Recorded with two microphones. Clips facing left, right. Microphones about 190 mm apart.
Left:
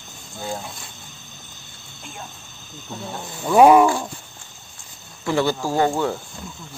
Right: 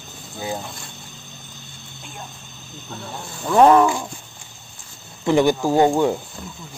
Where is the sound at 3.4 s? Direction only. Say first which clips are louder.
Left 1 dB; 10° left (ahead or behind).